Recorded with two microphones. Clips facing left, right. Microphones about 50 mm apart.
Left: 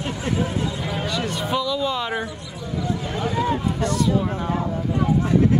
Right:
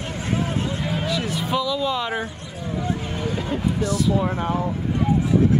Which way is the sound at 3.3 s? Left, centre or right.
Left.